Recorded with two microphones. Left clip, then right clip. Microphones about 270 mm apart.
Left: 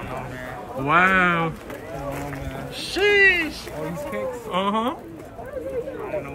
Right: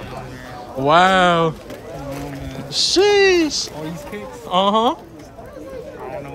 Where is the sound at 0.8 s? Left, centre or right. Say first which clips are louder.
Right 5 dB; centre.